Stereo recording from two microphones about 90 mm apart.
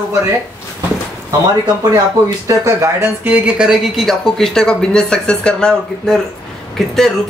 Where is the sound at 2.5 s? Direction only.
35° right (ahead or behind).